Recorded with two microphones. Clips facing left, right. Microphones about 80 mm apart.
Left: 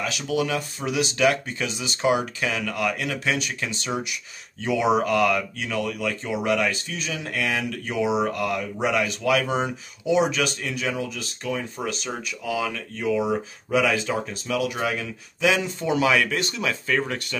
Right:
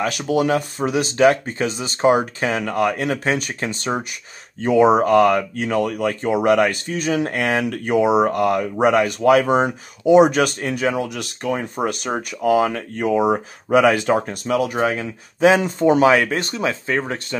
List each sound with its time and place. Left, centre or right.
0.0 s speech: right
14.5 s speech: right